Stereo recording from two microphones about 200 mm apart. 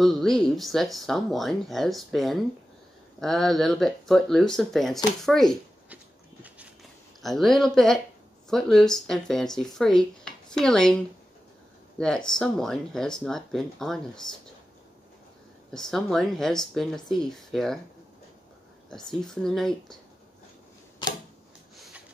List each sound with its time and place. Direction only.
0.0 s speech: centre (ahead or behind)
7.2 s speech: centre (ahead or behind)
12.3 s speech: 5° left (ahead or behind)
15.7 s speech: centre (ahead or behind)
18.9 s speech: centre (ahead or behind)
21.0 s camera: 25° left (ahead or behind)